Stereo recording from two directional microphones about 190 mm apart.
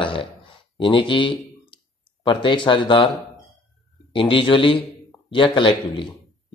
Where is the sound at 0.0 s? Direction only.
25° left (ahead or behind).